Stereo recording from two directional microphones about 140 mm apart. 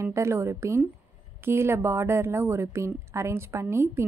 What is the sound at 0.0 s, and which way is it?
A woman's voice, 20° right (ahead or behind).